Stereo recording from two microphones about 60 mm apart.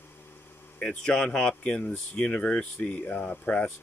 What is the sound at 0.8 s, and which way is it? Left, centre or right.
Speech, centre.